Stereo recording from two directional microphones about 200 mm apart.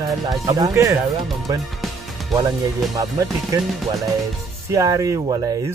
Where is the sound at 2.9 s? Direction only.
15° right (ahead or behind).